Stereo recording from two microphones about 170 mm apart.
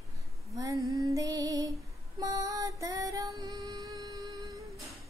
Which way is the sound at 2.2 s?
20° right (ahead or behind).